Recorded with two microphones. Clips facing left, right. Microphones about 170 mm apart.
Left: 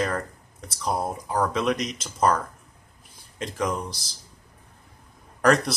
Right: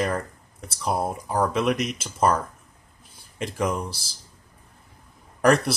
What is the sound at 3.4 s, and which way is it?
Speech, 5° right (ahead or behind).